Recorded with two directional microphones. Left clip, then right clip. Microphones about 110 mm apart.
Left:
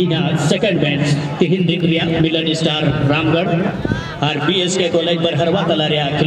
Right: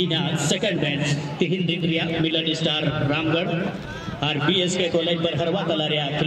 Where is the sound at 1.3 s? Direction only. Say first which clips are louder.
Left 8 dB; 10° left (ahead or behind).